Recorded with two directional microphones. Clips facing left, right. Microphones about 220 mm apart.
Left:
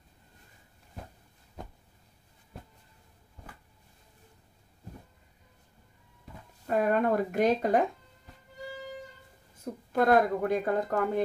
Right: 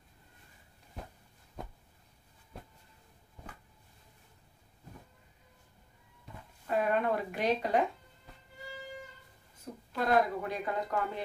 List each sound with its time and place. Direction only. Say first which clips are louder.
6.7 s speech: left 4 dB; 45° left (ahead or behind)
9.9 s speech: left 5 dB; 50° left (ahead or behind)